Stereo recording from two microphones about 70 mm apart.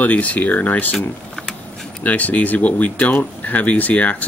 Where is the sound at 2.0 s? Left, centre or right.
Left.